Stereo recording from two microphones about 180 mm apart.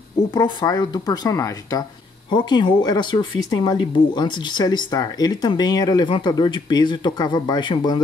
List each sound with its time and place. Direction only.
0.3 s speech: 25° left (ahead or behind)